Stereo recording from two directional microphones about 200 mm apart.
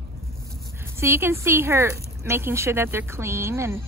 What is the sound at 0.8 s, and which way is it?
Speech, 10° right (ahead or behind).